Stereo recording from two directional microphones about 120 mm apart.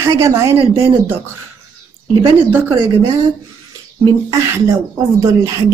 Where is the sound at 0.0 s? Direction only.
25° right (ahead or behind).